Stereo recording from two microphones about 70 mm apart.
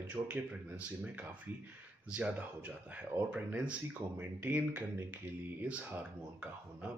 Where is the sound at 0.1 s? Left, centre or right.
Right.